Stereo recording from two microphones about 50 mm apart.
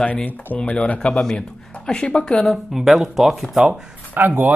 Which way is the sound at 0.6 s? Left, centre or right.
Left.